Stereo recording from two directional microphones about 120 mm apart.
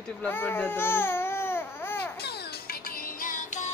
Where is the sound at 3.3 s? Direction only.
90° left.